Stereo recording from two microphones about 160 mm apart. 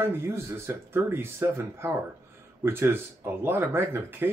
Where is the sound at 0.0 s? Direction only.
15° right (ahead or behind).